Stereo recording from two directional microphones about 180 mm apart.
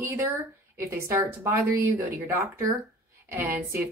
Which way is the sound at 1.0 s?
15° right (ahead or behind).